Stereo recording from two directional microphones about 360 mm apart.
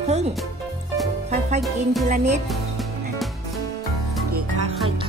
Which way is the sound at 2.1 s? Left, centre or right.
Centre.